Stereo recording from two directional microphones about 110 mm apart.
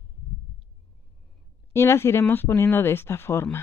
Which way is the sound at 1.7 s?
25° left (ahead or behind).